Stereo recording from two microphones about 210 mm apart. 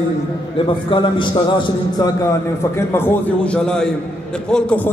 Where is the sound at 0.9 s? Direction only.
20° left (ahead or behind).